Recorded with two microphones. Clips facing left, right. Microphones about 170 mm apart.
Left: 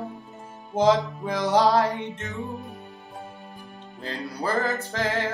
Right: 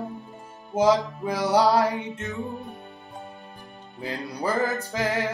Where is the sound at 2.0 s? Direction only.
5° right (ahead or behind).